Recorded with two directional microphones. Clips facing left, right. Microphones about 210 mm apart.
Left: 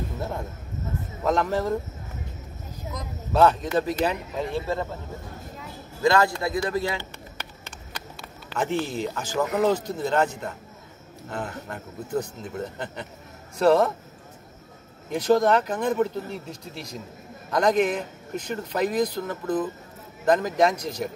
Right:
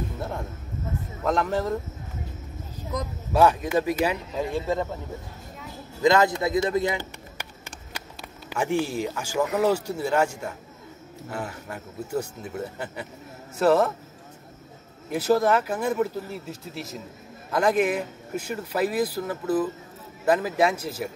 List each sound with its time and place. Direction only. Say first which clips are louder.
1.2 s speech: left 1 dB; centre (ahead or behind)
3.3 s speech: even; 10° right (ahead or behind)
6.0 s a man's voice: right 1 dB; 20° right (ahead or behind)
8.5 s speech: right 1 dB; 10° right (ahead or behind)
15.0 s speech: left 1 dB; 5° right (ahead or behind)